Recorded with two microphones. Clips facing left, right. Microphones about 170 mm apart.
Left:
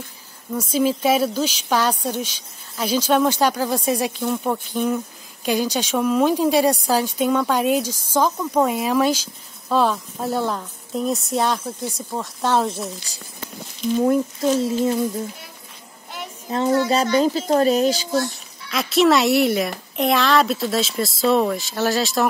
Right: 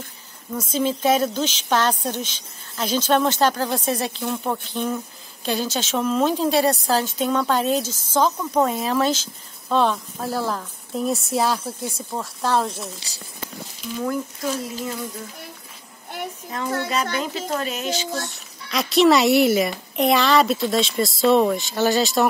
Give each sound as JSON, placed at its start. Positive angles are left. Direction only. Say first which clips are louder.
{"t": 0.5, "sound": "speech", "louder": "left 3 dB", "side_deg": 10}
{"t": 14.0, "sound": "speech", "louder": "left 5 dB", "side_deg": 25}
{"t": 16.4, "sound": "a child's voice", "louder": "left 9 dB", "side_deg": 30}
{"t": 18.7, "sound": "speech", "louder": "even", "side_deg": 0}